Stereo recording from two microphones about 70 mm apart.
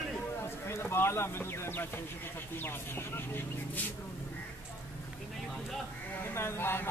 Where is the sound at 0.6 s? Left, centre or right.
Left.